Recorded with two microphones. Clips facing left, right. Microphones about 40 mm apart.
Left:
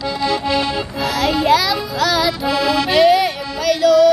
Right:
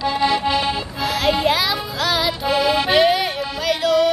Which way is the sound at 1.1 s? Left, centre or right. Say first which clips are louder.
Left 3 dB; centre.